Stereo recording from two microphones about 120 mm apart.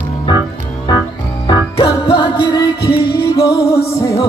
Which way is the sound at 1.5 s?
45° left (ahead or behind).